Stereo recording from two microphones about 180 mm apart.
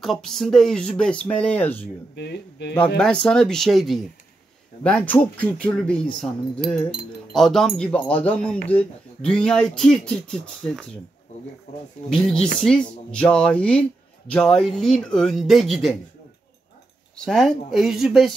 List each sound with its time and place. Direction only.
0.0 s speech: centre (ahead or behind)
2.1 s speech: 70° left (ahead or behind)
3.0 s speech: 5° left (ahead or behind)
12.1 s speech: 5° left (ahead or behind)
17.2 s speech: centre (ahead or behind)